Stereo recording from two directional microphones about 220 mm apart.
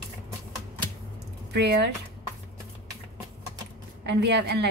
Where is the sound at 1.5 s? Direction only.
50° right (ahead or behind).